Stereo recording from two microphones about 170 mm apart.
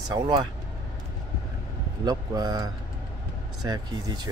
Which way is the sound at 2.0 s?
25° right (ahead or behind).